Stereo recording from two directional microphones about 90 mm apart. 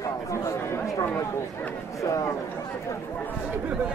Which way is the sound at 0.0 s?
35° left (ahead or behind).